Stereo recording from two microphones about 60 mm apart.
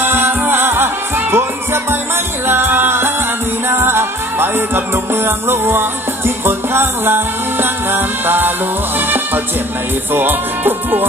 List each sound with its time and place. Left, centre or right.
0.0 s music: right
10.1 s music: right